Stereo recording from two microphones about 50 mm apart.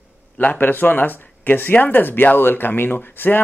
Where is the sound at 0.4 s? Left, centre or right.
Left.